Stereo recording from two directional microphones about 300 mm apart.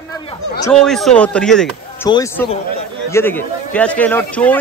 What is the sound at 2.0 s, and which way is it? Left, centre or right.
Speech, centre.